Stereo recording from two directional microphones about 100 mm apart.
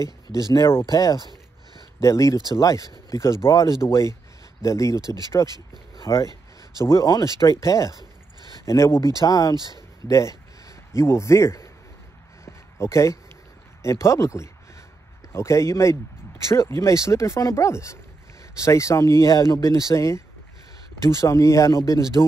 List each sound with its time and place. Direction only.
0.4 s speech: 35° left (ahead or behind)
9.6 s speech: 45° right (ahead or behind)
10.0 s a man's voice: 30° left (ahead or behind)
12.4 s a sound: 25° left (ahead or behind)
13.8 s speech: 30° left (ahead or behind)